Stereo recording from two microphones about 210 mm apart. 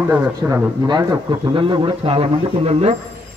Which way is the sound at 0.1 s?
20° right (ahead or behind).